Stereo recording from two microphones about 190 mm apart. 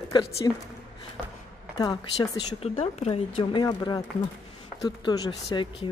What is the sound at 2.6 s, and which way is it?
A woman's voice, 35° left (ahead or behind).